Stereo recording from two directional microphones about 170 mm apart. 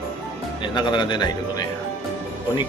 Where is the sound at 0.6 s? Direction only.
25° left (ahead or behind).